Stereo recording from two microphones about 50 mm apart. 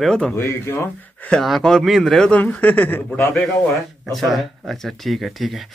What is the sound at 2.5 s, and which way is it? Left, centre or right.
Speech, left.